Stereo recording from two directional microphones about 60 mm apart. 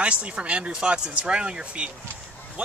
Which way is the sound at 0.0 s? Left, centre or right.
Centre.